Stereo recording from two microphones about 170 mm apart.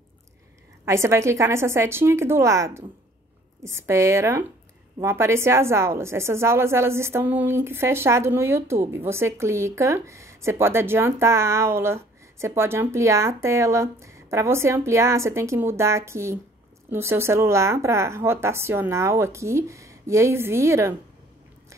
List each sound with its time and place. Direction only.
0.8 s a woman's voice: 15° right (ahead or behind)